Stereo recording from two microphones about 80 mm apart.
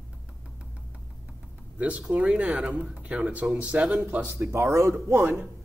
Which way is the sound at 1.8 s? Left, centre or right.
Centre.